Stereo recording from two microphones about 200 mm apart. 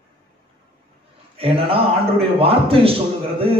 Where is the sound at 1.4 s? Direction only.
30° right (ahead or behind).